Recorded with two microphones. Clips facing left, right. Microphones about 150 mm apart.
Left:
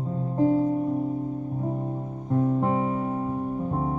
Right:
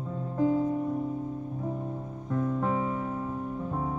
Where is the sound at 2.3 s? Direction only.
30° left (ahead or behind).